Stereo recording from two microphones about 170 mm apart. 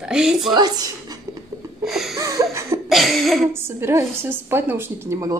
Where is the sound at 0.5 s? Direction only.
25° right (ahead or behind).